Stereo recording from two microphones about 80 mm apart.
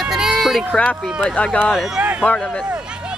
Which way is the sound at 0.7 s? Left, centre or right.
Centre.